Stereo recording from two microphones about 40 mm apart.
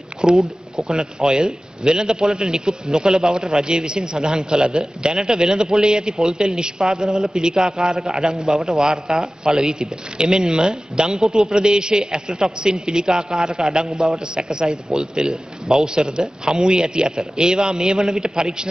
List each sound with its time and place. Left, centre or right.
0.4 s speech: centre
0.9 s a man's voice: centre
11.5 s a man's voice: centre